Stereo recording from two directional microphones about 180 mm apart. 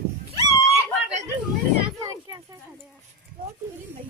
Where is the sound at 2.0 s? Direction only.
20° right (ahead or behind).